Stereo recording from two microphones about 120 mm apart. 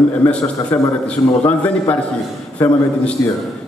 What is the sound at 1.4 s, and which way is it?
A man's voice, 15° left (ahead or behind).